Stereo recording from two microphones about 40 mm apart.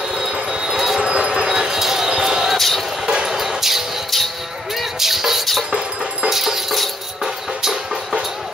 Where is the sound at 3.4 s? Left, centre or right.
Centre.